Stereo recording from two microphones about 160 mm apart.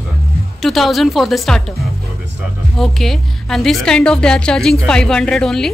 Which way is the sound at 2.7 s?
Centre (ahead or behind).